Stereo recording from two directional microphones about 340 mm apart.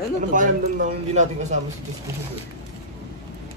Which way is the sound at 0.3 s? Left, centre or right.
Right.